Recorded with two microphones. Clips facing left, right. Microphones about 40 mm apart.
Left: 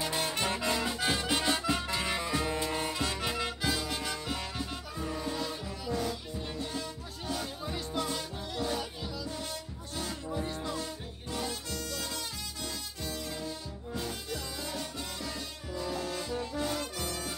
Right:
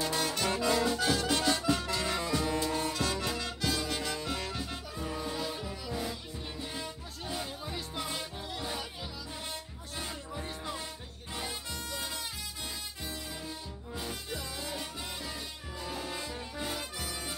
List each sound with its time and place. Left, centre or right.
0.0 s brass instrument: left
0.6 s music: centre
3.7 s music: centre
10.3 s music: centre